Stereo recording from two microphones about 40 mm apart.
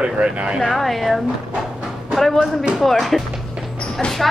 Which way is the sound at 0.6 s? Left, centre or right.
Centre.